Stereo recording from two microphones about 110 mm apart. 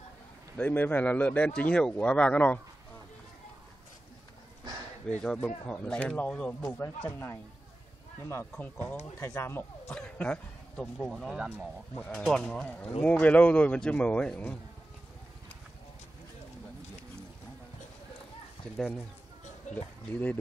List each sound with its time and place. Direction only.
0.6 s speech: 15° left (ahead or behind)
5.0 s speech: 5° left (ahead or behind)
7.0 s speech: 20° left (ahead or behind)
8.5 s speech: 15° left (ahead or behind)
9.9 s a man's voice: 10° left (ahead or behind)
11.3 s speech: 10° right (ahead or behind)
12.0 s speech: 15° left (ahead or behind)
12.3 s speech: 5° left (ahead or behind)
19.7 s a sound: 90° left
20.1 s speech: 15° left (ahead or behind)